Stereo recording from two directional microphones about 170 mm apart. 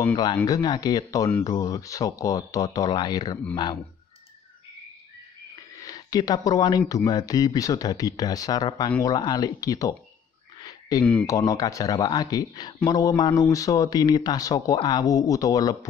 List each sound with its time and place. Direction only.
0.0 s speech: 25° left (ahead or behind)
5.8 s speech: 20° left (ahead or behind)
10.6 s a sound: 20° left (ahead or behind)
11.2 s speech: 20° left (ahead or behind)